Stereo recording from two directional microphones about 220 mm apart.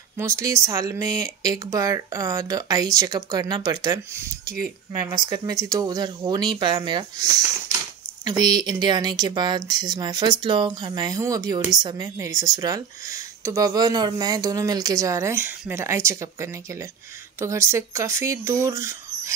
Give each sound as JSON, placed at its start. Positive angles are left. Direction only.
{"t": 0.2, "sound": "speech", "side_deg": -15}
{"t": 4.5, "sound": "speech", "side_deg": -45}
{"t": 5.1, "sound": "speech", "side_deg": -15}